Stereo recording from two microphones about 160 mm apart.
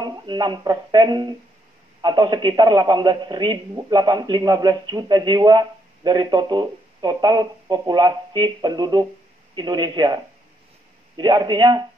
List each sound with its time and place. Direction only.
0.0 s a man's voice: 30° right (ahead or behind)